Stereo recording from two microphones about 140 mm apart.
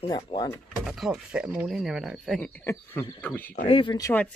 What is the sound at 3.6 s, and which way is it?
Speech, 40° left (ahead or behind).